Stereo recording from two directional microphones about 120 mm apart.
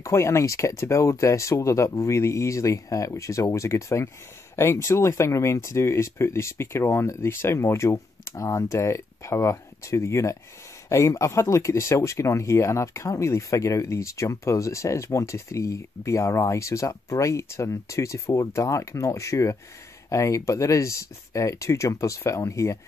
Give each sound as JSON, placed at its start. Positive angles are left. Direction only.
{"t": 0.0, "sound": "speech", "side_deg": 25}